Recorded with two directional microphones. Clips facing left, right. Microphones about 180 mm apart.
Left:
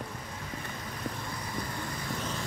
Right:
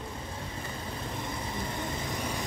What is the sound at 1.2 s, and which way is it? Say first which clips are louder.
Vehicle: right 2 dB; 25° right (ahead or behind).